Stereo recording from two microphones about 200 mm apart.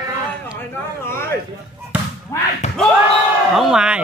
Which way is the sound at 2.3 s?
15° left (ahead or behind).